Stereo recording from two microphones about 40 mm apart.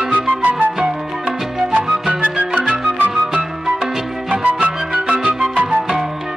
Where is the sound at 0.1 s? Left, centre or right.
Right.